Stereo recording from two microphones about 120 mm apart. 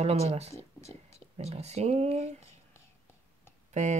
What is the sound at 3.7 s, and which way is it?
Speech, 80° right.